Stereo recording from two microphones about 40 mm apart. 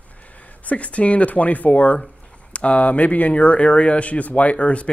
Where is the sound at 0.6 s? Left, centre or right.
Left.